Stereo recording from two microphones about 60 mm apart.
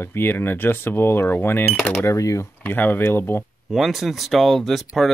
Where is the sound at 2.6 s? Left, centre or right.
Left.